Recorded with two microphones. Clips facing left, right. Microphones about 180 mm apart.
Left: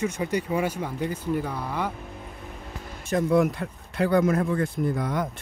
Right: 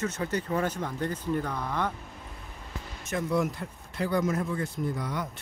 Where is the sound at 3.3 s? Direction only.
60° left (ahead or behind).